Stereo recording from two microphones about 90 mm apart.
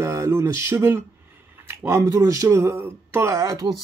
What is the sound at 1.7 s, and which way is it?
Speech, 25° right (ahead or behind).